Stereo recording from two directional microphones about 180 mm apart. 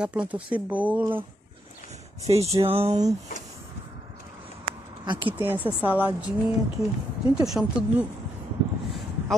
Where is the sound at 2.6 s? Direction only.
35° right (ahead or behind).